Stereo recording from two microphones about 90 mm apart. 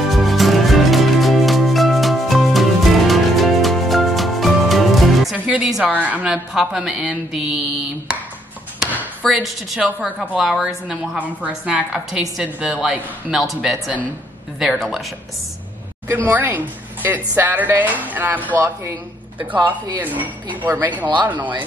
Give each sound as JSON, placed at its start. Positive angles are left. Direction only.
{"t": 0.1, "sound": "music", "side_deg": 0}
{"t": 5.9, "sound": "a woman's voice", "side_deg": -15}
{"t": 6.3, "sound": "speech", "side_deg": 0}
{"t": 9.2, "sound": "speech", "side_deg": 0}
{"t": 11.1, "sound": "a woman's voice", "side_deg": -15}
{"t": 11.9, "sound": "speech", "side_deg": -5}
{"t": 16.3, "sound": "a woman's voice", "side_deg": -20}